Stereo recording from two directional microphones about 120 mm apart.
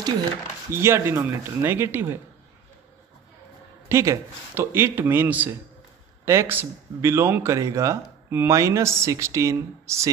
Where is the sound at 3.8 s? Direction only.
25° right (ahead or behind).